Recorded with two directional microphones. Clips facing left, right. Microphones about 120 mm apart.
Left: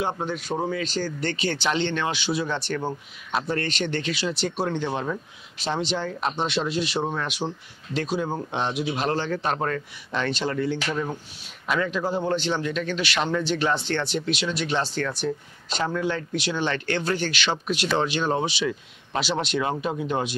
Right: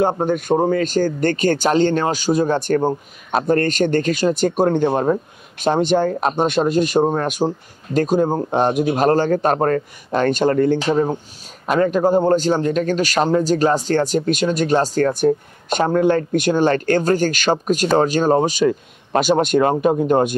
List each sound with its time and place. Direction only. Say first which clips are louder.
0.0 s speech: right 10 dB; 50° right (ahead or behind)
10.8 s speech: right 10 dB; 35° right (ahead or behind)
11.6 s speech: right 9 dB; 45° right (ahead or behind)